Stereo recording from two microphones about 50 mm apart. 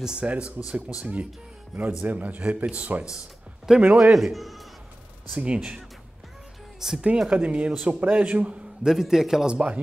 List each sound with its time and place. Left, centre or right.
0.0 s a man's voice: centre
3.7 s a man's voice: centre
5.3 s speech: right
6.8 s speech: centre
7.2 s speech: right
8.8 s a man's voice: centre